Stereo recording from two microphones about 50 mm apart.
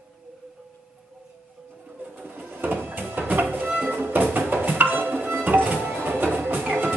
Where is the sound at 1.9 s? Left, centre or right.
Right.